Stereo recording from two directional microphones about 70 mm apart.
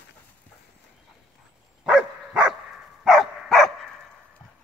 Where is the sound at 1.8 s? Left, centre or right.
Centre.